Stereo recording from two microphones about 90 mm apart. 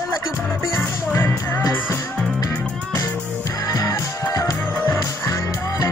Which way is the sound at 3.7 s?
40° left (ahead or behind).